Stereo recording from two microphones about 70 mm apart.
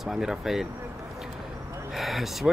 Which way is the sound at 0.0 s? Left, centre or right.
Centre.